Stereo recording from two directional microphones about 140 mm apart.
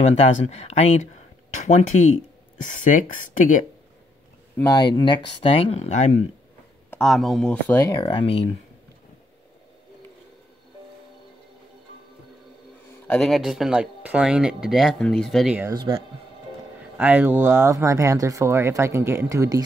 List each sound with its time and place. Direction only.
0.1 s speech: 50° left (ahead or behind)
4.6 s speech: 25° left (ahead or behind); by 6.1 s 55° left (ahead or behind)
6.9 s speech: 5° left (ahead or behind)
8.0 s speech: 40° left (ahead or behind)
13.0 s speech: 5° left (ahead or behind)
15.7 s speech: 35° right (ahead or behind)
16.9 s speech: 10° right (ahead or behind)